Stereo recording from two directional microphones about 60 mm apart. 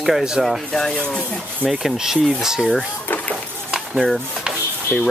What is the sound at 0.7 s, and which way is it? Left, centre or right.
Speech, centre.